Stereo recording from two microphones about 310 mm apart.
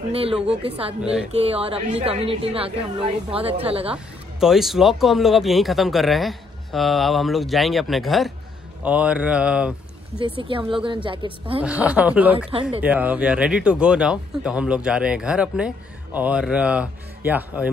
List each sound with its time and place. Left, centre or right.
0.1 s a woman's voice: centre
3.9 s speech: centre
10.2 s speech: centre
11.6 s speech: centre